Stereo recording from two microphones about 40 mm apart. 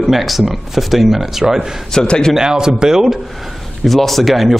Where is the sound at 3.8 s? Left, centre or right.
Centre.